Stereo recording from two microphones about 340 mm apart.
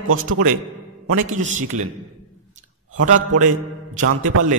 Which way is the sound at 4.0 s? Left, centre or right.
Right.